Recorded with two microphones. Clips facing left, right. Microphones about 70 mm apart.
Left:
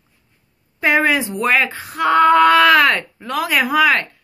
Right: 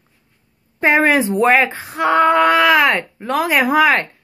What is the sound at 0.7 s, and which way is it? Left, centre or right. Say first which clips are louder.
Speech: right 2 dB; right.